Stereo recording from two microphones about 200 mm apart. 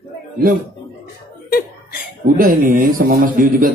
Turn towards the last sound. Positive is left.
turn(degrees=-45)  # may be behind; listen again after turning